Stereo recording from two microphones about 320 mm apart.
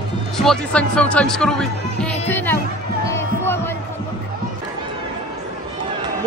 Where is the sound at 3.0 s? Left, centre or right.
Centre.